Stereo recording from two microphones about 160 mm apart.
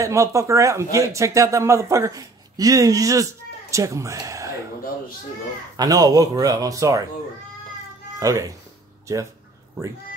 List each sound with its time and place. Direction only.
0.0 s speech: 20° right (ahead or behind)
5.8 s speech: 25° right (ahead or behind)
8.2 s speech: 20° right (ahead or behind)